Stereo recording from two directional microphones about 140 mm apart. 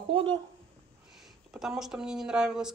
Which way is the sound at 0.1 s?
35° right (ahead or behind).